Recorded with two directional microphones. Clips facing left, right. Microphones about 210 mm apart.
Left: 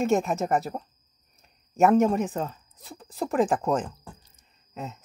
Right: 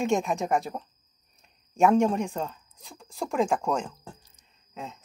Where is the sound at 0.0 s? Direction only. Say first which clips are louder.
Left 2 dB; centre (ahead or behind).